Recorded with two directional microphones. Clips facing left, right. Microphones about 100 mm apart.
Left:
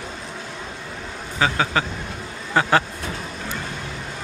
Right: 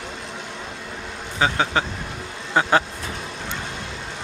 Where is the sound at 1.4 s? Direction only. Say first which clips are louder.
Even; 20° right (ahead or behind).